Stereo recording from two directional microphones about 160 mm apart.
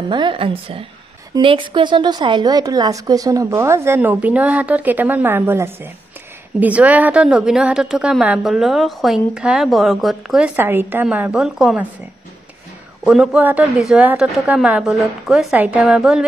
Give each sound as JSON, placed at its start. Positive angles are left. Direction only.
{"t": 0.1, "sound": "a woman's voice", "side_deg": -30}
{"t": 13.0, "sound": "a woman's voice", "side_deg": -5}